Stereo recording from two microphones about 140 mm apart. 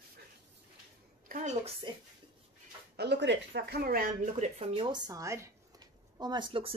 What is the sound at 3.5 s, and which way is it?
Speech, 90° right.